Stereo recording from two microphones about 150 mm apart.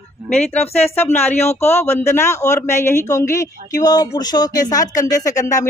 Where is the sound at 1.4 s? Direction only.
45° left (ahead or behind).